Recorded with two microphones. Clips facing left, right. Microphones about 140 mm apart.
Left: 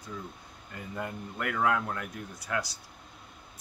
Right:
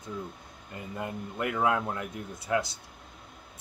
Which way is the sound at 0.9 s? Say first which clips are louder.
Right 1 dB; 20° right (ahead or behind).